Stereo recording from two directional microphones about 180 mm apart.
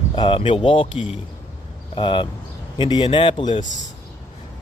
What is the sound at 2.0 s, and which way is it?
A man's voice, 25° left (ahead or behind).